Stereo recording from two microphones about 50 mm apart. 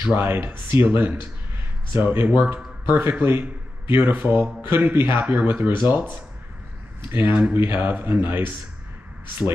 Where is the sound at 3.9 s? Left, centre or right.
Right.